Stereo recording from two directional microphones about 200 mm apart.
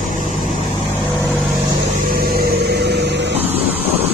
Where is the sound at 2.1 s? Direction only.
50° right (ahead or behind).